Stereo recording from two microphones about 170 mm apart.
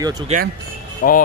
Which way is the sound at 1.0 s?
55° left (ahead or behind).